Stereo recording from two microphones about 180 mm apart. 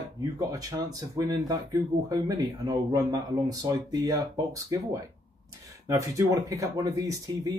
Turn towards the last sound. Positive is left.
turn(degrees=-20)  # may be behind; listen again after turning